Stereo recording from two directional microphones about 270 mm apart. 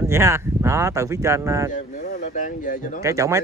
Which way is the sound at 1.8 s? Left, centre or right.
Left.